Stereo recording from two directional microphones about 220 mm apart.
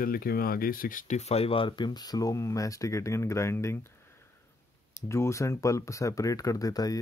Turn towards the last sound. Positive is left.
turn(degrees=15)  # may be behind; listen again after turning